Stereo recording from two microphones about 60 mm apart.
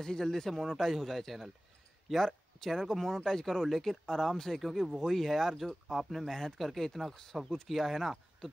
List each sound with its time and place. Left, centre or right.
0.0 s speech: centre